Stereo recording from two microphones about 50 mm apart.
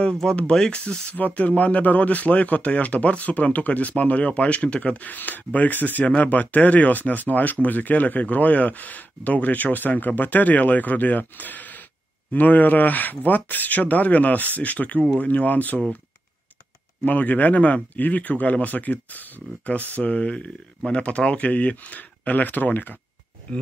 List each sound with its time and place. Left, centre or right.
0.1 s speech: centre
0.7 s speech: left
1.1 s speech: left
5.0 s speech: left
17.0 s speech: left